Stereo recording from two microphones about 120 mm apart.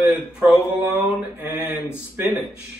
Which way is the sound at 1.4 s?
15° right (ahead or behind).